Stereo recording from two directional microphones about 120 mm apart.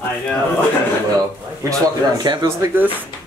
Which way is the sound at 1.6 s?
30° right (ahead or behind).